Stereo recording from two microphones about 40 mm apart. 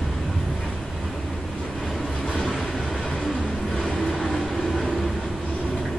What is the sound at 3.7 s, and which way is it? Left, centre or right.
Vehicle, centre.